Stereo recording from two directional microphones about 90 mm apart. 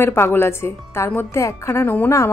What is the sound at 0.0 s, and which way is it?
A woman's voice, 25° left (ahead or behind).